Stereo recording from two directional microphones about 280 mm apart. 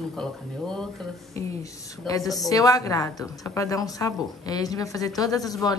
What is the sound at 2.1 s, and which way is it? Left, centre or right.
A woman's voice, centre.